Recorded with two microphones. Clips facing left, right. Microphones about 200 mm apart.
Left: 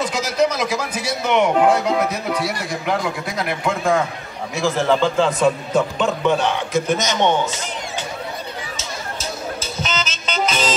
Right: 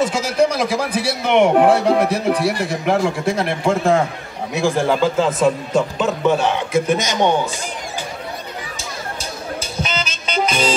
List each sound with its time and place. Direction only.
0.0 s a sound: 30° right (ahead or behind)
1.2 s a man's voice: 50° right (ahead or behind)
2.0 s speech: 30° right (ahead or behind)
4.6 s a man's voice: 15° right (ahead or behind)
9.8 s music: 10° right (ahead or behind)